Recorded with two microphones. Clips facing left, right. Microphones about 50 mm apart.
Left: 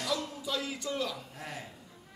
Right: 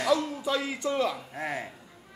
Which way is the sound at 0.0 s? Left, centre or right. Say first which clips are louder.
Right 8 dB; right.